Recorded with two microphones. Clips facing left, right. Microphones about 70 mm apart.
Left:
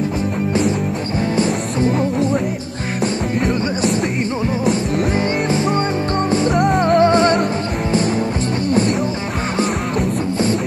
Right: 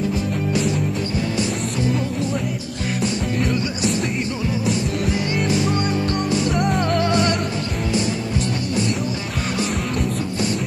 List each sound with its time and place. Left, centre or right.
1.3 s music: left
3.4 s music: left
6.8 s music: left